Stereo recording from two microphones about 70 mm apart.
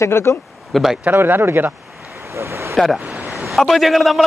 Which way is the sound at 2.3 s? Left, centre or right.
Right.